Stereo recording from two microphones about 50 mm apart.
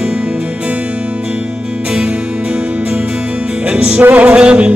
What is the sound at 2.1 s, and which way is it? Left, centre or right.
Music, right.